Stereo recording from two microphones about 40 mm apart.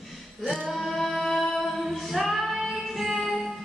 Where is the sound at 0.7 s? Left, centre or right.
Centre.